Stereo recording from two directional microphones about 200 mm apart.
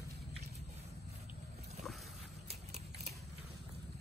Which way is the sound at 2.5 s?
30° right (ahead or behind).